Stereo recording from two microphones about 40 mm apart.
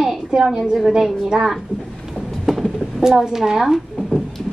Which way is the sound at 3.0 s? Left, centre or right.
Centre.